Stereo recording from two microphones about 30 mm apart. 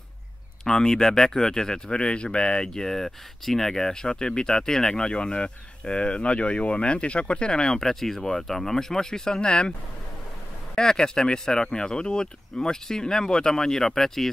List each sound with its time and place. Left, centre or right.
0.7 s speech: left
2.0 s speech: left; by 5.0 s centre
5.0 s speech: left
7.4 s speech: left
7.8 s speech: centre